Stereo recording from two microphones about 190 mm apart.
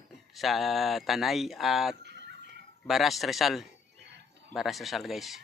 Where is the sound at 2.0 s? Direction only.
65° right (ahead or behind).